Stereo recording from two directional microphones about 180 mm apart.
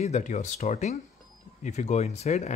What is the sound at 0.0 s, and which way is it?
Speech, 40° left (ahead or behind).